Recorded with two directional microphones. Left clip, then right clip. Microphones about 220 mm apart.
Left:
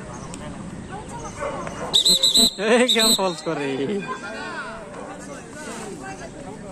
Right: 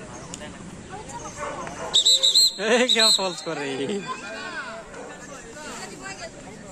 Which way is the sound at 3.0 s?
Centre (ahead or behind).